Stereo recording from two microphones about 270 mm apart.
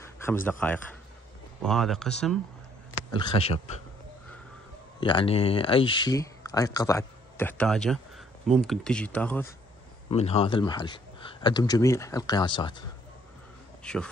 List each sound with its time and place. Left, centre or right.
0.0 s speech: centre
3.1 s speech: centre
5.0 s speech: centre
10.0 s speech: left
13.9 s speech: centre